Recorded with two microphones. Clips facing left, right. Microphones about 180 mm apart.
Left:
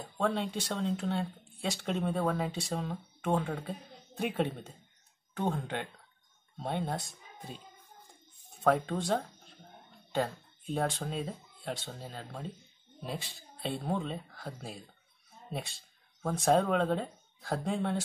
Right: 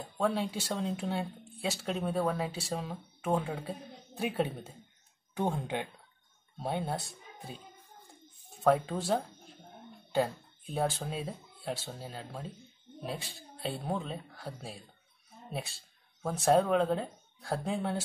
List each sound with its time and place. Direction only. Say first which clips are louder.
0.0 s speech: right 1 dB; 5° right (ahead or behind)
8.6 s speech: right 1 dB; 5° right (ahead or behind)